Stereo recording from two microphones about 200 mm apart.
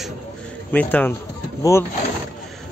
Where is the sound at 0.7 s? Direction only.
10° left (ahead or behind).